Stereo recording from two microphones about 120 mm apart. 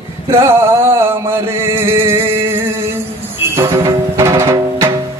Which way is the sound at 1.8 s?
20° right (ahead or behind).